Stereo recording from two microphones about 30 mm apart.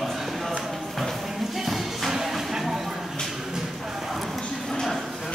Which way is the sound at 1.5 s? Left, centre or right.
Centre.